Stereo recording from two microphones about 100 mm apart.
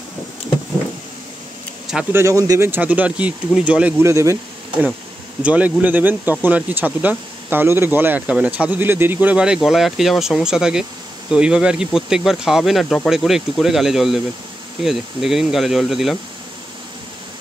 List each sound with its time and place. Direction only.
2.1 s speech: 30° right (ahead or behind)
2.8 s speech: 15° right (ahead or behind)
4.0 s speech: 30° right (ahead or behind)
5.4 s speech: 15° right (ahead or behind)